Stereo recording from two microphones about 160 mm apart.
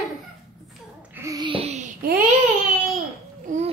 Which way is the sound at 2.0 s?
65° right (ahead or behind).